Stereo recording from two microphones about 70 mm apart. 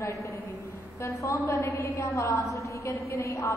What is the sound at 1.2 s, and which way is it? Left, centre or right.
A woman's voice, left.